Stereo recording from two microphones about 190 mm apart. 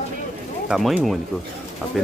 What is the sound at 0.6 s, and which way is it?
Speech, centre (ahead or behind).